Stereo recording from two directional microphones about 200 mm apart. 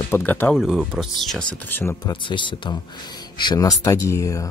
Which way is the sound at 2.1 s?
25° left (ahead or behind).